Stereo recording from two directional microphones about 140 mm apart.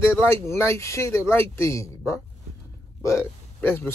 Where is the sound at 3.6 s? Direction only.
15° left (ahead or behind).